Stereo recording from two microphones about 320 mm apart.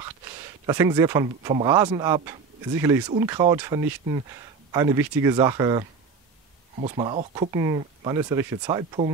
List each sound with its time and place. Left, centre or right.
0.7 s speech: centre